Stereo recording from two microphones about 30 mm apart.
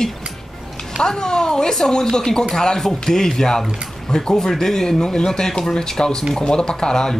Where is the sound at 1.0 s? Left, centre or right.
Left.